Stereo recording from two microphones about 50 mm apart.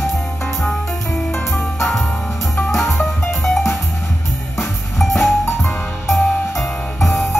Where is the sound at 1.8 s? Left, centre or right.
Centre.